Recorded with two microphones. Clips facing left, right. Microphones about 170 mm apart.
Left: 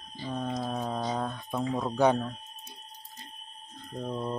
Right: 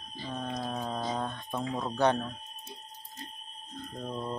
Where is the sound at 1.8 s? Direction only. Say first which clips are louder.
Left 2 dB; 10° left (ahead or behind).